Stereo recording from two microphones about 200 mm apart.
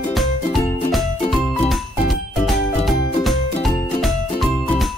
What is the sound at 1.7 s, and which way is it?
Music, centre (ahead or behind).